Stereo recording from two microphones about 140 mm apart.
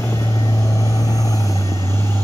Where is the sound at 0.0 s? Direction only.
20° left (ahead or behind).